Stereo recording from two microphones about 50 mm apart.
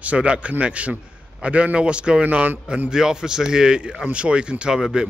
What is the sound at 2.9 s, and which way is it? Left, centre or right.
Speech, centre.